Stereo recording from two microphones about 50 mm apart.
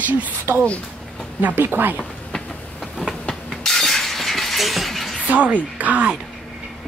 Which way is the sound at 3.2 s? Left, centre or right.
Centre.